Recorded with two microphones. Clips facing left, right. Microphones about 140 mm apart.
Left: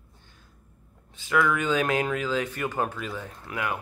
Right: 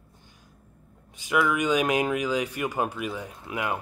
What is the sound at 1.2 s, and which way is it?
Speech, 15° right (ahead or behind).